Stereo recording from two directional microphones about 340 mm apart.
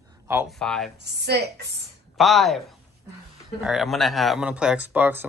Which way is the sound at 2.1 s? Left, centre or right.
Centre.